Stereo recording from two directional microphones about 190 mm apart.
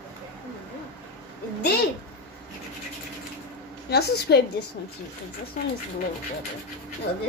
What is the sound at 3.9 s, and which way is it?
Speech, 60° left (ahead or behind).